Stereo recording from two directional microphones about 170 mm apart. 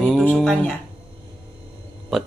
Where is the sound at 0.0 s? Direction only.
5° left (ahead or behind).